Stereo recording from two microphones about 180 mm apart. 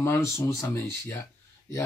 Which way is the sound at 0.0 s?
15° left (ahead or behind).